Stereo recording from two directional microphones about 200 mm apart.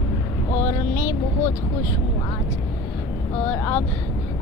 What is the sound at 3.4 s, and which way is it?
Speech, 10° left (ahead or behind).